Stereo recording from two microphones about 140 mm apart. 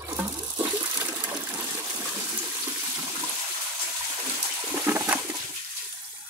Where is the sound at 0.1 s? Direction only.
20° right (ahead or behind).